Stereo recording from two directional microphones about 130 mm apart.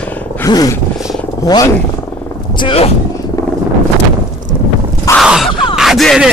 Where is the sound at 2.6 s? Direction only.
45° left (ahead or behind).